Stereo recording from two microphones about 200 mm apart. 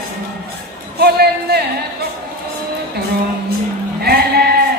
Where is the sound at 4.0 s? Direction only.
50° right (ahead or behind).